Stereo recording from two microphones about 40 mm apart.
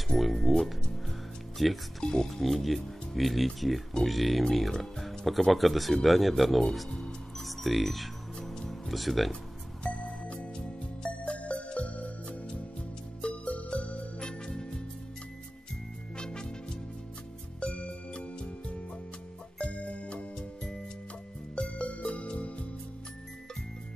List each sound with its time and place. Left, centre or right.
0.1 s speech: centre
8.6 s music: centre
9.8 s music: left
14.4 s music: centre
16.2 s music: left
21.5 s music: left